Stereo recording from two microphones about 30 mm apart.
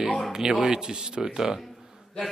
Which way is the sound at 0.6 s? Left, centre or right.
Right.